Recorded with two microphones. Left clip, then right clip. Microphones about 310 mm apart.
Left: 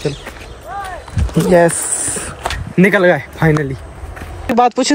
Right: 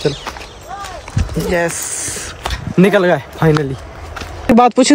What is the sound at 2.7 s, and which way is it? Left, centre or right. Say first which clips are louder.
Speech: left 1 dB; centre.